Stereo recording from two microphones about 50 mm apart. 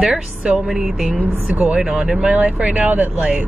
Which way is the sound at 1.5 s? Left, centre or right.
Right.